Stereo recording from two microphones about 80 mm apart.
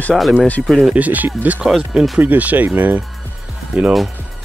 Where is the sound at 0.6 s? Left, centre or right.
Centre.